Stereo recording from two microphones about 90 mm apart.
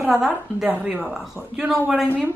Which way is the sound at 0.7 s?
15° right (ahead or behind).